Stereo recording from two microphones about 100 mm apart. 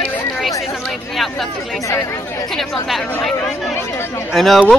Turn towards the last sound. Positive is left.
turn(degrees=0)  # may be behind; listen again after turning